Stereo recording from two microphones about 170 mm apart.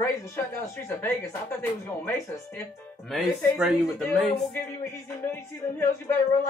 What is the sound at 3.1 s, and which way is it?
Speech, centre (ahead or behind).